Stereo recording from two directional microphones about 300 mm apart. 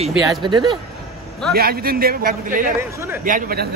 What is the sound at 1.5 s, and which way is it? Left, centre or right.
A man's voice, right.